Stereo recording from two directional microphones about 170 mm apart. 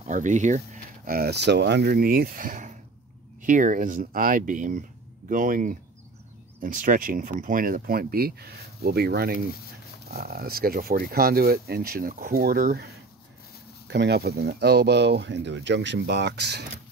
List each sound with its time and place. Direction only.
0.0 s speech: 45° right (ahead or behind)
1.0 s speech: 60° right (ahead or behind)
13.8 s speech: 85° right